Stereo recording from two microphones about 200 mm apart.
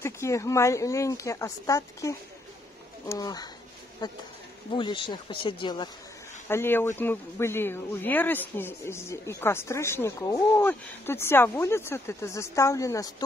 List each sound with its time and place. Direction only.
0.0 s speech: 15° left (ahead or behind)
6.5 s speech: 10° left (ahead or behind)